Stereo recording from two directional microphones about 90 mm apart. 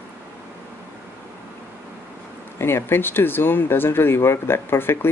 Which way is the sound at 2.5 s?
25° left (ahead or behind).